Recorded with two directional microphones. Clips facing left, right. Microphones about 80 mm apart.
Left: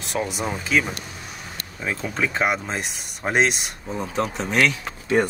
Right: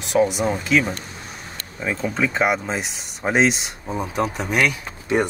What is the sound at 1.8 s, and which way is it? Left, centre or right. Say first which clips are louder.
Speech: right 3 dB; centre.